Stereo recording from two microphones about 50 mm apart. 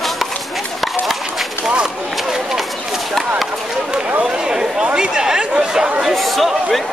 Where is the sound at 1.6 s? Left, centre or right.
Centre.